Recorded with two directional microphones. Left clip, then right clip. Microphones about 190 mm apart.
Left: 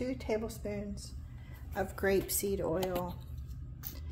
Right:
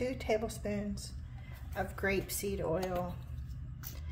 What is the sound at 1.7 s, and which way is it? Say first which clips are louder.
Speech: left 3 dB; 20° left (ahead or behind).